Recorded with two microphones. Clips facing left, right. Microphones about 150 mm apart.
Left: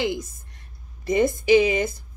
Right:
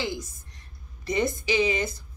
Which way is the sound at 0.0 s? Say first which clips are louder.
Left 6 dB; 55° left (ahead or behind).